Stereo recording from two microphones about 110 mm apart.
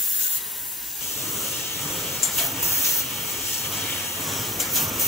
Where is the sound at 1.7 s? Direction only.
Centre (ahead or behind).